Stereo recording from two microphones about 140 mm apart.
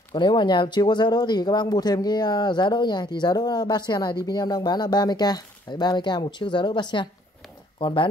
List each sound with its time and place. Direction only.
0.1 s speech: 35° left (ahead or behind)